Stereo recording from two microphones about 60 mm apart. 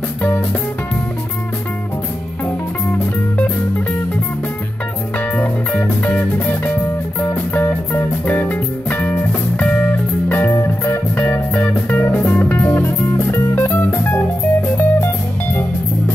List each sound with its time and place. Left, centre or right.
3.3 s music: left
5.4 s music: left
9.6 s music: centre
10.2 s music: left
10.5 s music: left
11.1 s music: left
13.6 s music: left